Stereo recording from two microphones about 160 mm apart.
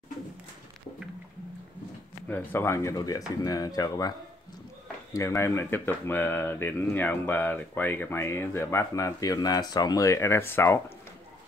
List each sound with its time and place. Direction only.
2.2 s speech: 10° left (ahead or behind)
5.1 s speech: 15° left (ahead or behind)